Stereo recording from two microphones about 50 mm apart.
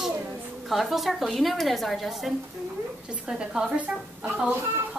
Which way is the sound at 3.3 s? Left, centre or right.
Centre.